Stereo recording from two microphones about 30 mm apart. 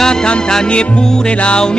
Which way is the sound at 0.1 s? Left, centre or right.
Left.